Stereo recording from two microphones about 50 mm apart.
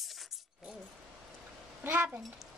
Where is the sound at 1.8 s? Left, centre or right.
Right.